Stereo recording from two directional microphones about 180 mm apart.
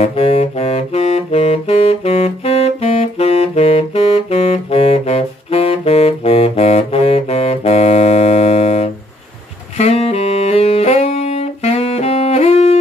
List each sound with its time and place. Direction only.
0.0 s saxophone: 35° left (ahead or behind)